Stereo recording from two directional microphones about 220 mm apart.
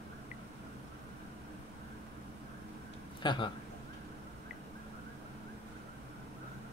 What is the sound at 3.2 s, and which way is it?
Speech, 20° left (ahead or behind).